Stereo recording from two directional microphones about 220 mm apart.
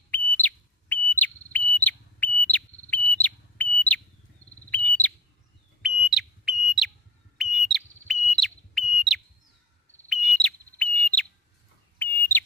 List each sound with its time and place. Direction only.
0.1 s whistle: 5° left (ahead or behind)
4.6 s bird: 5° left (ahead or behind)
5.8 s smoke detector: centre (ahead or behind)
7.3 s whistle: centre (ahead or behind)
8.3 s smoke detector: 5° left (ahead or behind)
10.0 s bird: centre (ahead or behind)